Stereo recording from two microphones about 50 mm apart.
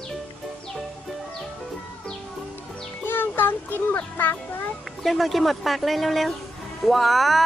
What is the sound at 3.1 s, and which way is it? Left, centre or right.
Music, left.